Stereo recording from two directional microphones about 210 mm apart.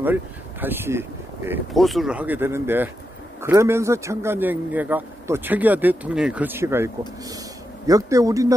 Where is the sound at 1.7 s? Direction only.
Centre (ahead or behind).